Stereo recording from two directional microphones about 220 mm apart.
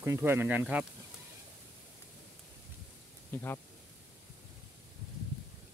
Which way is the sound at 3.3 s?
10° left (ahead or behind).